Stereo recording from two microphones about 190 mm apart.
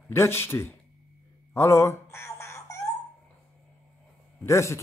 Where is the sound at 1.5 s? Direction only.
15° left (ahead or behind).